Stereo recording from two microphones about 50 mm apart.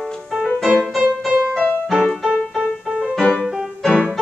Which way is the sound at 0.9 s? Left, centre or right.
Centre.